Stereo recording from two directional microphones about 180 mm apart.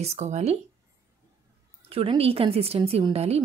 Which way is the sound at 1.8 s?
30° right (ahead or behind).